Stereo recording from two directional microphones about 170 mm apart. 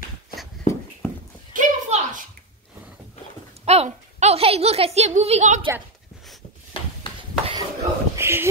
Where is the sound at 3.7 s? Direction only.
40° right (ahead or behind).